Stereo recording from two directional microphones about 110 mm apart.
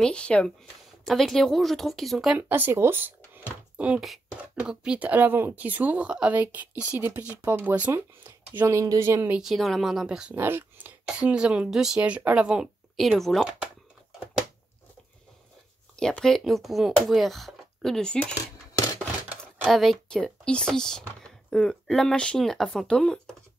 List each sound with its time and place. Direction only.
0.0 s speech: 10° left (ahead or behind)
2.3 s speech: 15° right (ahead or behind)
9.4 s speech: centre (ahead or behind)
16.0 s speech: 5° left (ahead or behind)
19.6 s speech: centre (ahead or behind)